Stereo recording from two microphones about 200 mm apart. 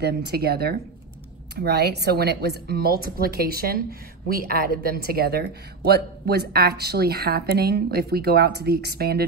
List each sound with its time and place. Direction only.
0.0 s speech: 55° right (ahead or behind)